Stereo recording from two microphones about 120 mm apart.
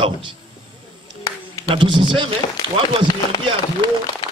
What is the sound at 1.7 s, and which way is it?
Speech, 45° right (ahead or behind).